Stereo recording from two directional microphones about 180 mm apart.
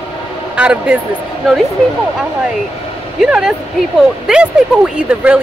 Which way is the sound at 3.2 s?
5° right (ahead or behind).